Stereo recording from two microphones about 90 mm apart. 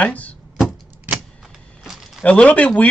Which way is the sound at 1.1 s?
20° right (ahead or behind).